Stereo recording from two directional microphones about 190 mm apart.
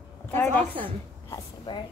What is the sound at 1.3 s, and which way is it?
Speech, 20° left (ahead or behind).